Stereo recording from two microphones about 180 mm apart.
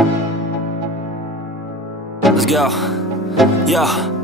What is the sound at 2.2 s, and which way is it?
Speech, centre (ahead or behind).